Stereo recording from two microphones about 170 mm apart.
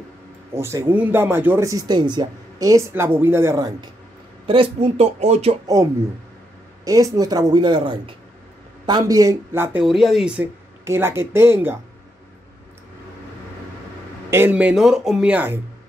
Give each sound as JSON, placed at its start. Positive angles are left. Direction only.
{"t": 0.6, "sound": "speech", "side_deg": -15}
{"t": 6.8, "sound": "speech", "side_deg": -20}
{"t": 9.8, "sound": "speech", "side_deg": 0}
{"t": 14.3, "sound": "speech", "side_deg": -10}